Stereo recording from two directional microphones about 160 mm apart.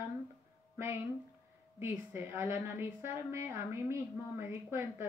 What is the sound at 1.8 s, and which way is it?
Speech, 15° right (ahead or behind).